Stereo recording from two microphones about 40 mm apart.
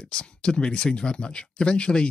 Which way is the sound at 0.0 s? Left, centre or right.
Left.